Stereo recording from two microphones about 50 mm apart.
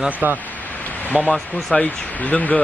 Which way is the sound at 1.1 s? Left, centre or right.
Left.